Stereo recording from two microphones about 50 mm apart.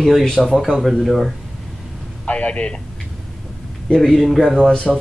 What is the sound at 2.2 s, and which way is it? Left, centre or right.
Speech, left.